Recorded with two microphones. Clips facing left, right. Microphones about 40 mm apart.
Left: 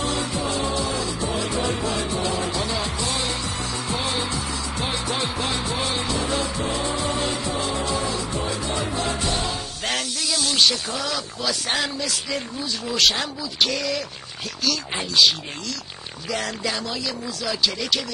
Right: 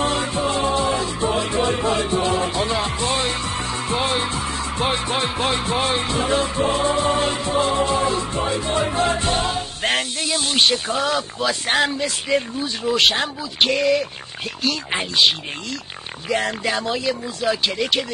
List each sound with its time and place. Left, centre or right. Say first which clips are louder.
0.0 s music: right 4 dB; right
14.6 s speech: right 3 dB; right